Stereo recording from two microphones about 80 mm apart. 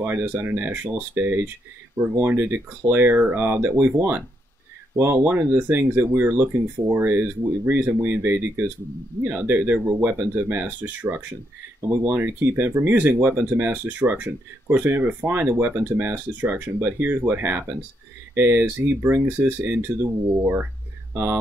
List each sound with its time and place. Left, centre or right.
0.0 s speech: right
21.1 s speech: right